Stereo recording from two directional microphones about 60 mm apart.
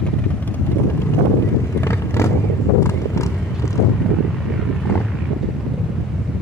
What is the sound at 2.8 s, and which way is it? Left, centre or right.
Horse, left.